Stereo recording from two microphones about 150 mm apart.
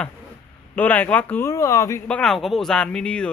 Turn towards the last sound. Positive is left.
turn(degrees=5)  # may be behind; listen again after turning